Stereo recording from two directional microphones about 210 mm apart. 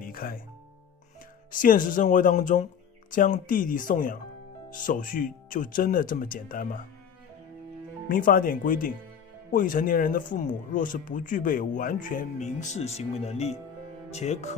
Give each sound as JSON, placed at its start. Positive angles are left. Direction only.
{"t": 0.0, "sound": "music", "side_deg": 45}
{"t": 1.5, "sound": "speech", "side_deg": 40}
{"t": 8.1, "sound": "speech", "side_deg": 45}